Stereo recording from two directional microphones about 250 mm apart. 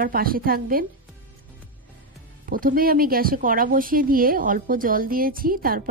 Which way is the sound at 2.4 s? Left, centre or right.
Right.